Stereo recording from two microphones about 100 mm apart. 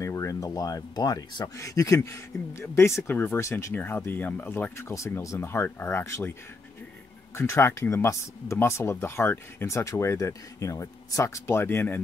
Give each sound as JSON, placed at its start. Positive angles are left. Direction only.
{"t": 0.0, "sound": "speech", "side_deg": 30}
{"t": 7.3, "sound": "speech", "side_deg": 25}